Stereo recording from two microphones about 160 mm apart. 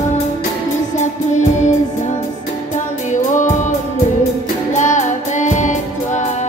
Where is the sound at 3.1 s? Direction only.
50° left (ahead or behind).